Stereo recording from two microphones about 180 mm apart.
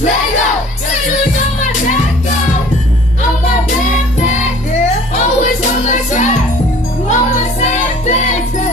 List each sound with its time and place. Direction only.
4.8 s music: 40° left (ahead or behind)